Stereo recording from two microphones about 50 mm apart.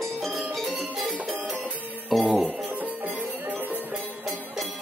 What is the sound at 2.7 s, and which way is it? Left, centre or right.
Music, right.